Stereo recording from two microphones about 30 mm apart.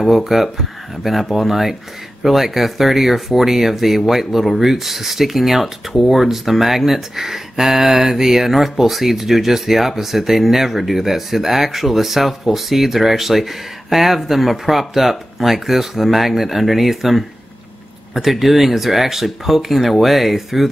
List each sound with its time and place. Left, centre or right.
0.1 s speech: centre